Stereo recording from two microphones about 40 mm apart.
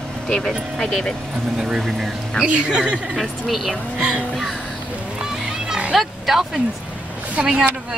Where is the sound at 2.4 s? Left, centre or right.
Right.